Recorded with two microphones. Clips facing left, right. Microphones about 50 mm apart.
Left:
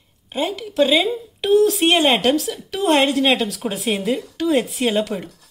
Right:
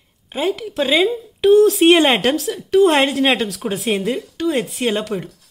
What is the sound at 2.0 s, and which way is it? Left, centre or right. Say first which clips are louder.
Speech: right 2 dB; right.